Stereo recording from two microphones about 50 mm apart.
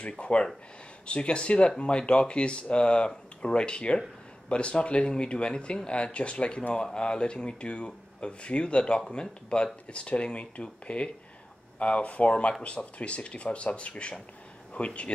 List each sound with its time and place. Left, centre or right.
0.1 s speech: left